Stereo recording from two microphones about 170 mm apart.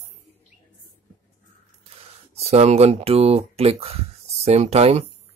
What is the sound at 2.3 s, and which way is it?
Speech, 40° right (ahead or behind).